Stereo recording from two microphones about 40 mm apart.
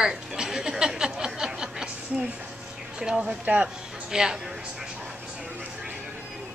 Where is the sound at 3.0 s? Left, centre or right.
Centre.